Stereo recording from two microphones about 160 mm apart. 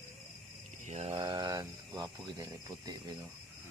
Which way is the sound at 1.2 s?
25° right (ahead or behind).